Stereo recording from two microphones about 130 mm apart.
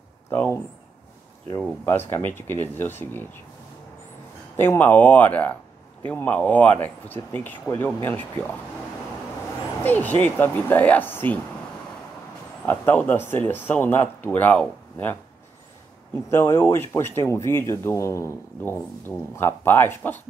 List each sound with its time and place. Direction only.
0.3 s speech: 15° left (ahead or behind)
1.9 s speech: 20° left (ahead or behind)
4.6 s speech: 15° left (ahead or behind)
9.8 s speech: 15° left (ahead or behind)
12.6 s speech: 15° left (ahead or behind)
16.3 s speech: 20° left (ahead or behind)